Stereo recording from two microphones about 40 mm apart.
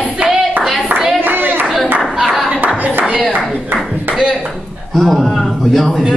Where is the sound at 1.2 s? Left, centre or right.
Right.